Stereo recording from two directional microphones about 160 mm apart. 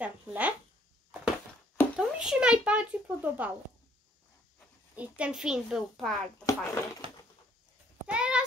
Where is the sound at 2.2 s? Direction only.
5° right (ahead or behind).